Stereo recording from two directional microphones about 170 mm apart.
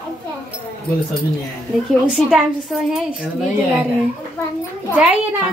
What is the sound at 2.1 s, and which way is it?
Speech, centre (ahead or behind).